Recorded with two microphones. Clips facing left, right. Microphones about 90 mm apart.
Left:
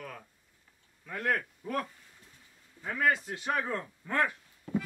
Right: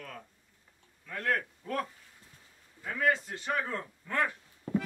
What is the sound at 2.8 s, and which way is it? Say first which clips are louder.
Speech: even; 10° left (ahead or behind).